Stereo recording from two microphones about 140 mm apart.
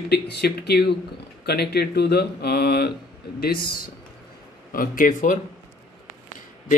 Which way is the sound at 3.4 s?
90° left.